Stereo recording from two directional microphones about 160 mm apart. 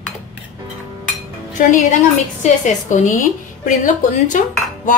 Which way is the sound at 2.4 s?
50° left (ahead or behind).